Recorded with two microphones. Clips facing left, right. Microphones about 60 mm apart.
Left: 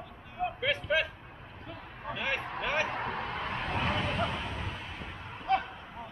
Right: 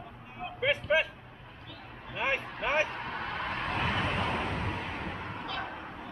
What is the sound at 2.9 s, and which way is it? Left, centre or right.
Vehicle, left.